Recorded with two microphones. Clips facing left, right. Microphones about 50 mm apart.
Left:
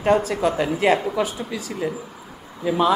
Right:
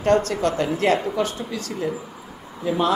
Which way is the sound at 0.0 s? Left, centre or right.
Centre.